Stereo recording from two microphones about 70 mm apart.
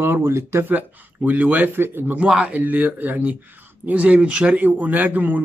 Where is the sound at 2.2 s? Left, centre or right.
Centre.